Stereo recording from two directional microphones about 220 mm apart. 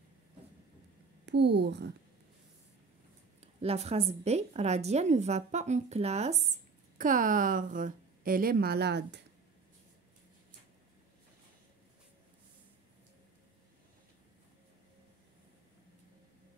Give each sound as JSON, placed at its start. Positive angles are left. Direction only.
{"t": 1.2, "sound": "a child's voice", "side_deg": -50}
{"t": 3.6, "sound": "a woman's voice", "side_deg": -25}